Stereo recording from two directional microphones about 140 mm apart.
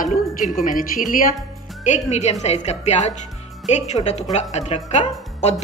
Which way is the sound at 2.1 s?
50° left (ahead or behind).